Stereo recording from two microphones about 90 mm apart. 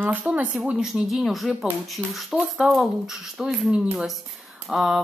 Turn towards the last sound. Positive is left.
turn(degrees=-5)  # may be behind; listen again after turning